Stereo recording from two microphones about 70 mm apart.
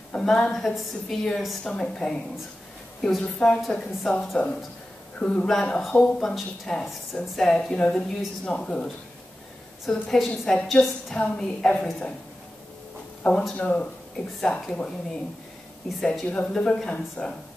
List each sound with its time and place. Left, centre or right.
0.1 s a woman's voice: centre
5.2 s a woman's voice: centre
13.2 s a woman's voice: centre